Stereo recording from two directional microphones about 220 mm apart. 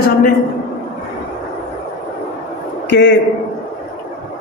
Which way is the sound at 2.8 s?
55° left (ahead or behind).